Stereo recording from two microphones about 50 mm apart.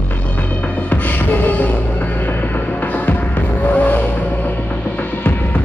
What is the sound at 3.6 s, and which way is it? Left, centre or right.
Vehicle, left.